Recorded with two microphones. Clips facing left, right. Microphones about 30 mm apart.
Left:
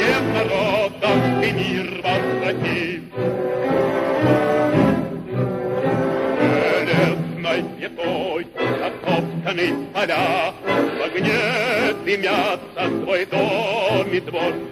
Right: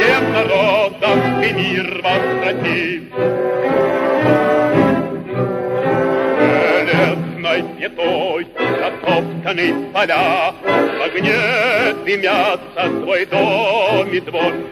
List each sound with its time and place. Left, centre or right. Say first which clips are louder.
0.0 s music: right 5 dB; centre
1.6 s music: right 5 dB; right
2.0 s music: right 4 dB; centre
6.3 s music: right 4 dB; centre
8.0 s music: right 6 dB; right
9.0 s music: right 5 dB; centre